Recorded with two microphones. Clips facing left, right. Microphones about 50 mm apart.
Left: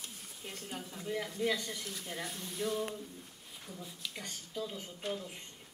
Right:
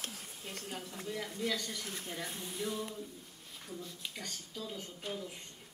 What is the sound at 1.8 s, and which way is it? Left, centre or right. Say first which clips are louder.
Speech: right 1 dB; right.